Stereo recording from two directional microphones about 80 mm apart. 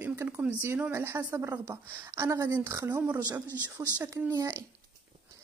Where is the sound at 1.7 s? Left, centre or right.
Right.